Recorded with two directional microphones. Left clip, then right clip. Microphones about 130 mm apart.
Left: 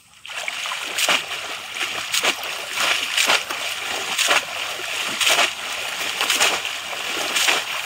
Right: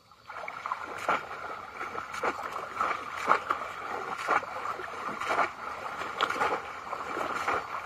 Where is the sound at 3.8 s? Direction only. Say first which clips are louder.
Left 12 dB; 45° left (ahead or behind).